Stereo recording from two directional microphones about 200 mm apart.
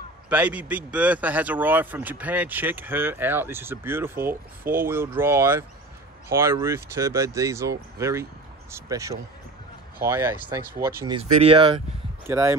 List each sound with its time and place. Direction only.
0.3 s speech: 5° right (ahead or behind)
11.1 s speech: 25° right (ahead or behind)
12.3 s speech: 15° right (ahead or behind)